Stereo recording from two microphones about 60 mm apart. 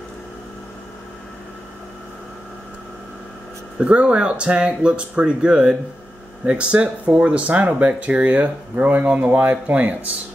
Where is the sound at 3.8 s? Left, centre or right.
Centre.